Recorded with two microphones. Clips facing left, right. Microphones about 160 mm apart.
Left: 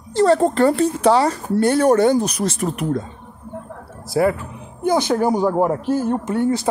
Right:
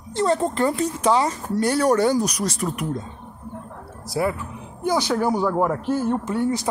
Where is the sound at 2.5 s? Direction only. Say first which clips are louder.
Left 3 dB; 25° left (ahead or behind).